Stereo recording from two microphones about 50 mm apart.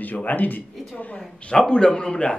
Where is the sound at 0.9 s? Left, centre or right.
Left.